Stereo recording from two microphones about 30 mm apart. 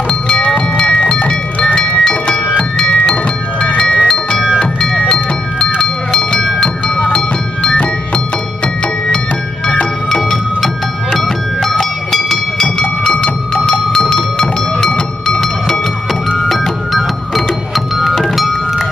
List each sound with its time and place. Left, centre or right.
1.8 s music: centre
3.7 s music: left
5.0 s music: centre
11.8 s music: centre
13.7 s cowbell: centre
17.9 s music: centre